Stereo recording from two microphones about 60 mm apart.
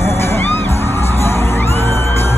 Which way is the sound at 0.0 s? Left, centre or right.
Left.